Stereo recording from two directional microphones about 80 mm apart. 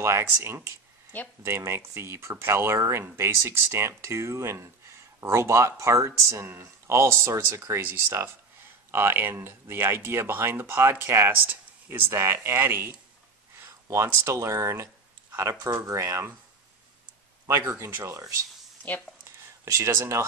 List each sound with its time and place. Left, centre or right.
0.0 s speech: right
17.5 s speech: right
19.2 s a sound: right